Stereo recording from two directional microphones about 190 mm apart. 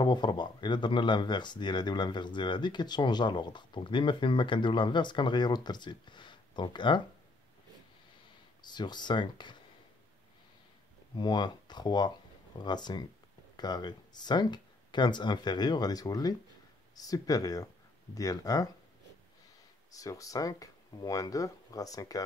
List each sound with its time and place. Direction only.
0.0 s speech: 25° left (ahead or behind)
8.6 s speech: 25° left (ahead or behind)
11.1 s speech: 20° left (ahead or behind)
19.9 s speech: 20° left (ahead or behind)